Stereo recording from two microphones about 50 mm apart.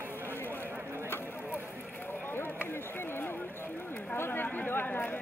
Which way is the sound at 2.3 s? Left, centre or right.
Left.